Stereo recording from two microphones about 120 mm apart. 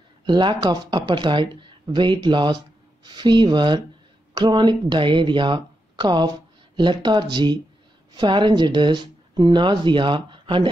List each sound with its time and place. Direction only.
0.2 s speech: 40° right (ahead or behind)